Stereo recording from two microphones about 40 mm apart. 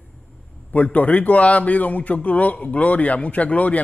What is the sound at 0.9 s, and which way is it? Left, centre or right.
A man's voice, left.